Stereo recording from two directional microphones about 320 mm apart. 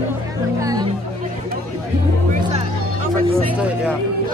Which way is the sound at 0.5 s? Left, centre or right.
Centre.